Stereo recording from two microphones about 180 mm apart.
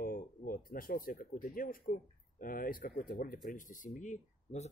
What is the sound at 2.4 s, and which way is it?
Speech, 50° left (ahead or behind).